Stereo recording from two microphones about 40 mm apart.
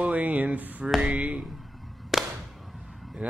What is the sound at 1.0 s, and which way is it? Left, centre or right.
Music, right.